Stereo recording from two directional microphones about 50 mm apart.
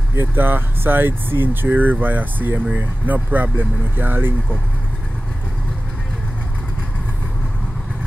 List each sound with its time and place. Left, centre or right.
0.3 s speech: right